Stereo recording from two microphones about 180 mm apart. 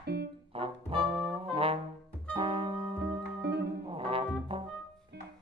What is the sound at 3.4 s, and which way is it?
Music, 65° right (ahead or behind).